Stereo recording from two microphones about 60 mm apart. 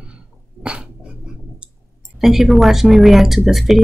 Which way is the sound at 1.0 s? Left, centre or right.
Centre.